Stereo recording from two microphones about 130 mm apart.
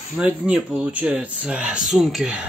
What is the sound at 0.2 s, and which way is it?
Speech, 15° right (ahead or behind).